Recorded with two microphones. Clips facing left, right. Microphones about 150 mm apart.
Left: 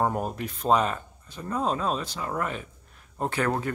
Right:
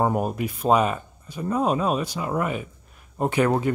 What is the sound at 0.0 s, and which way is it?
Speech, 10° right (ahead or behind).